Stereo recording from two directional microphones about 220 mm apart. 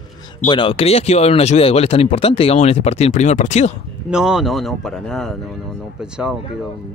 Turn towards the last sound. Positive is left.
turn(degrees=-5)  # may be behind; listen again after turning